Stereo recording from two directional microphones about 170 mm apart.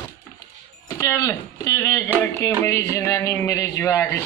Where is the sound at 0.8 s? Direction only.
20° left (ahead or behind).